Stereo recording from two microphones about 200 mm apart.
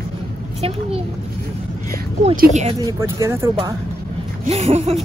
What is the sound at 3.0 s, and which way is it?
Speech, 10° right (ahead or behind).